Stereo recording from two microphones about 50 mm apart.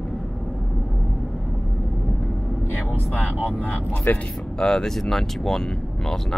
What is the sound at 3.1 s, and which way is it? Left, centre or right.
Speech, left.